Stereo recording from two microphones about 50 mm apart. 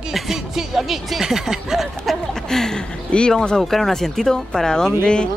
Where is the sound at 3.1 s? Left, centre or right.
Centre.